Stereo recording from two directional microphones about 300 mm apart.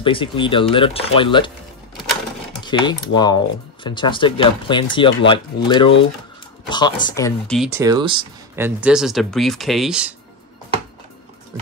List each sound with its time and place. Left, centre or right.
0.0 s speech: centre
2.6 s speech: centre